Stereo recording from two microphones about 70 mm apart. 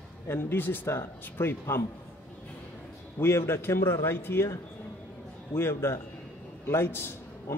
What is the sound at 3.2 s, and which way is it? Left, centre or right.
Speech, left.